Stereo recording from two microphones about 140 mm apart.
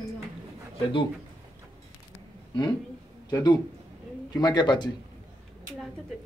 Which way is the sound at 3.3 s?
30° left (ahead or behind).